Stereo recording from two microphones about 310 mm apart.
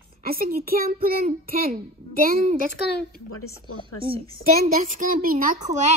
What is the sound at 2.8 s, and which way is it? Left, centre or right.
Speech, left.